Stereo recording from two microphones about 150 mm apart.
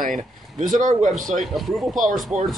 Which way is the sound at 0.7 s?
55° right (ahead or behind).